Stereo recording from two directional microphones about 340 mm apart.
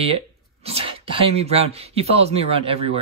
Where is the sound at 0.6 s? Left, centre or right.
Centre.